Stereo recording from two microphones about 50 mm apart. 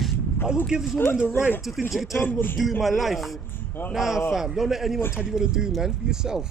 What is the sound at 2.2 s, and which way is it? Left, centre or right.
Speech, left.